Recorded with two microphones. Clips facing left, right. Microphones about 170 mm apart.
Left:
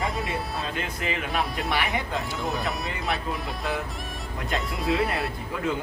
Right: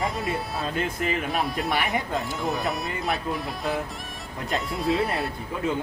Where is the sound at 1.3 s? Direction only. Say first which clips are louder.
Right 1 dB; centre (ahead or behind).